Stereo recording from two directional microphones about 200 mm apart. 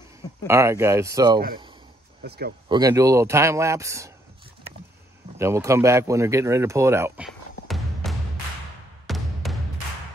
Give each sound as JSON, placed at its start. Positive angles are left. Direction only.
{"t": 0.5, "sound": "speech", "side_deg": -15}
{"t": 2.2, "sound": "speech", "side_deg": -55}
{"t": 2.7, "sound": "speech", "side_deg": -20}
{"t": 5.4, "sound": "speech", "side_deg": -15}
{"t": 7.2, "sound": "music", "side_deg": 0}